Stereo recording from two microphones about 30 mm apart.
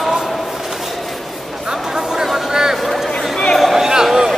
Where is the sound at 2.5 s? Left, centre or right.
Centre.